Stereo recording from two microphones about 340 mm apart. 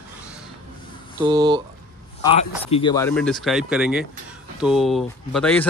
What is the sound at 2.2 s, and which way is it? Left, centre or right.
Speech, centre.